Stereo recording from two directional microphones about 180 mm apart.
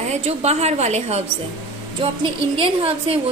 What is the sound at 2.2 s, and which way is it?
Speech, 30° right (ahead or behind).